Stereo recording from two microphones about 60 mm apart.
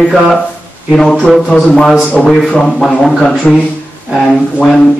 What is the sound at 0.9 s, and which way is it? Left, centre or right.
Speech, centre.